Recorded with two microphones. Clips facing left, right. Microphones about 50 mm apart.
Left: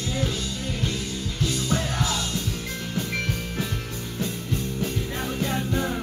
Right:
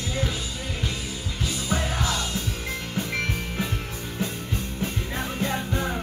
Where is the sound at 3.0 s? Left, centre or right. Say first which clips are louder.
Even; centre.